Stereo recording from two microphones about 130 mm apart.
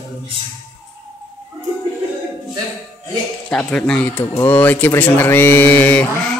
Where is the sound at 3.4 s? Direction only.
10° left (ahead or behind).